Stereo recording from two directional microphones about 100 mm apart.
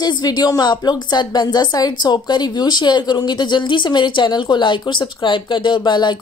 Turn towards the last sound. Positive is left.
turn(degrees=45)  # may be behind; listen again after turning